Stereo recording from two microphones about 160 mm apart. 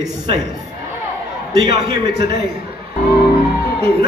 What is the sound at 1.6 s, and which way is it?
Speech, 30° right (ahead or behind).